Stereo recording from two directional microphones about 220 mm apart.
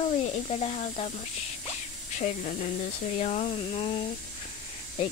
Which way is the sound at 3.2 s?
30° left (ahead or behind).